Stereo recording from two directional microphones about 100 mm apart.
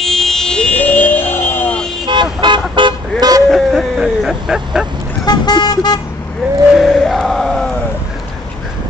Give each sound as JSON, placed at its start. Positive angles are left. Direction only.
{"t": 0.0, "sound": "a sound", "side_deg": 5}
{"t": 2.0, "sound": "vehicle", "side_deg": -50}
{"t": 3.4, "sound": "vehicle", "side_deg": 0}
{"t": 5.2, "sound": "speech", "side_deg": 45}
{"t": 6.7, "sound": "chant", "side_deg": 0}